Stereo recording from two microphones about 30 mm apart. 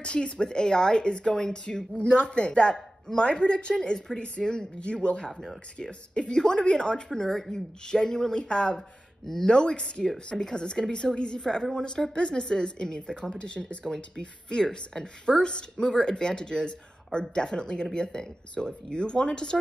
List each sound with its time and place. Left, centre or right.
0.0 s a woman's voice: left
6.3 s speech: left
7.1 s speech: centre
8.7 s speech: centre
9.5 s a woman's voice: left
13.8 s speech: left
18.9 s speech: left